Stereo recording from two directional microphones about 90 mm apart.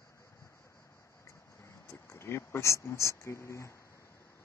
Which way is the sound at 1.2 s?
30° left (ahead or behind).